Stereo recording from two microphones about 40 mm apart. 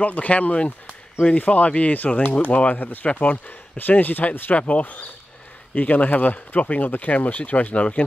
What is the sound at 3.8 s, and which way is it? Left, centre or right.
Speech, left.